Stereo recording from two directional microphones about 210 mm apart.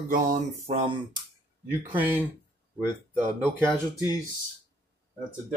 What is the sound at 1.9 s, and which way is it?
Speech, 10° right (ahead or behind).